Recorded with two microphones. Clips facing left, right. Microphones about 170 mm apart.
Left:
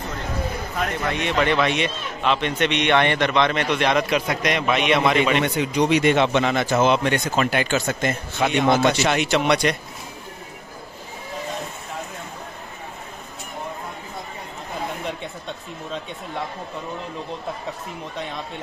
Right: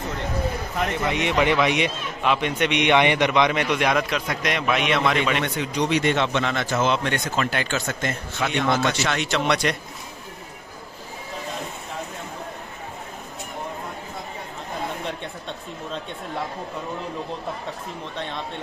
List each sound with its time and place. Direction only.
0.7 s a man's voice: 15° right (ahead or behind)
4.1 s speech: 5° left (ahead or behind)
15.0 s speech: centre (ahead or behind)
18.1 s speech: 5° left (ahead or behind)